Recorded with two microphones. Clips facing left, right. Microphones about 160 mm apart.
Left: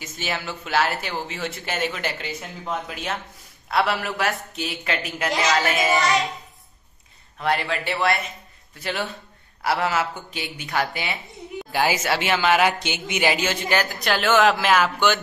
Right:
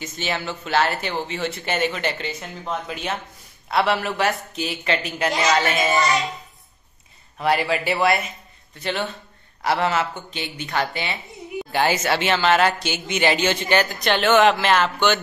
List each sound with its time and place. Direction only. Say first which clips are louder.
0.0 s speech: right 2 dB; 5° left (ahead or behind)
7.3 s a man's voice: right 3 dB; 5° right (ahead or behind); by 13.2 s 20° left (ahead or behind)
13.2 s speech: right 2 dB; 5° left (ahead or behind)